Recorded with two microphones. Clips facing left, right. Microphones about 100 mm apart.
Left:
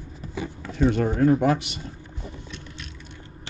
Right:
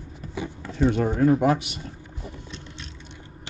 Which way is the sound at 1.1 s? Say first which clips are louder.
Even; 10° right (ahead or behind).